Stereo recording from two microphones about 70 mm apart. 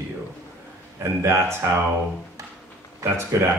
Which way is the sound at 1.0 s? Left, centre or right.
Right.